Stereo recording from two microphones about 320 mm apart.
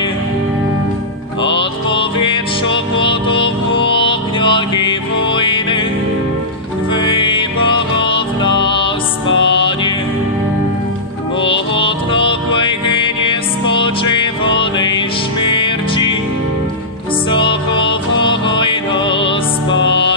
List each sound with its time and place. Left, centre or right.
1.5 s music: centre
6.9 s music: centre
11.7 s music: centre
17.3 s music: centre